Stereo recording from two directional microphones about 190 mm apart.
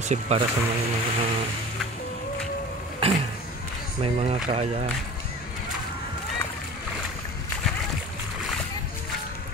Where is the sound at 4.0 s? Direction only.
35° right (ahead or behind).